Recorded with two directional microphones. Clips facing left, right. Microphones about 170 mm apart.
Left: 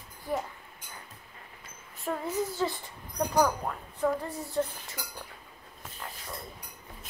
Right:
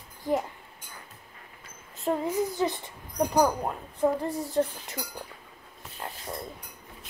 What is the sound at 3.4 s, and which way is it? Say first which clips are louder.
Speech: right 1 dB; 20° right (ahead or behind).